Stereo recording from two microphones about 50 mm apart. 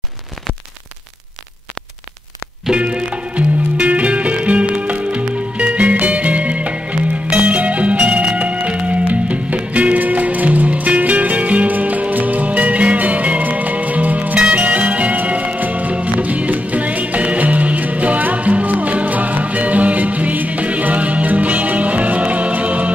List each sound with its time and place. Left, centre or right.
2.7 s music: right